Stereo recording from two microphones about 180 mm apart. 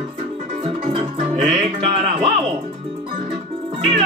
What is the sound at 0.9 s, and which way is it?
Music, 30° right (ahead or behind).